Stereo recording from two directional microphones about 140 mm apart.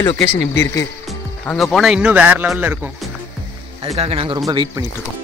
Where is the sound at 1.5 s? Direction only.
Centre (ahead or behind).